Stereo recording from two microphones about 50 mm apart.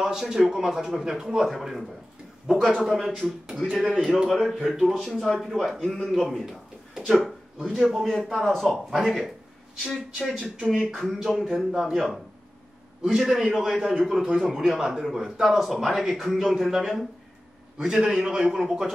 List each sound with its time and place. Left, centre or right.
0.0 s a man's voice: centre
2.4 s speech: centre
2.8 s a man's voice: centre
7.6 s a man's voice: centre
14.4 s a man's voice: centre
17.7 s speech: centre